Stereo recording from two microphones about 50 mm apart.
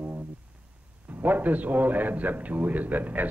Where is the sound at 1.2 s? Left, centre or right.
Right.